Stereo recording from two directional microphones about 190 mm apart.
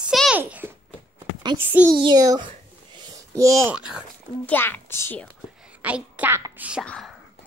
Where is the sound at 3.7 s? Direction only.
5° right (ahead or behind).